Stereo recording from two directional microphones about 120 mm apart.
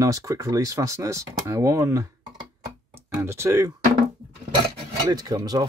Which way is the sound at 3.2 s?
20° right (ahead or behind).